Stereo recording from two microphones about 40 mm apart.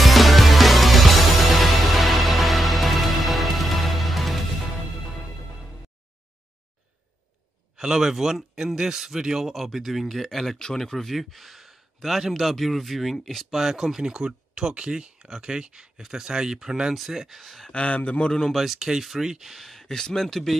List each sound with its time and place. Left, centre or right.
0.0 s music: centre
7.7 s a man's voice: centre
9.5 s speech: centre
13.6 s speech: centre
16.9 s speech: centre
17.6 s speech: left
18.5 s speech: centre
19.7 s speech: centre